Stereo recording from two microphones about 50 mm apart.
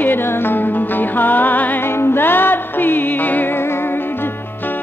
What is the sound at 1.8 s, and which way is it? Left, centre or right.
Music, left.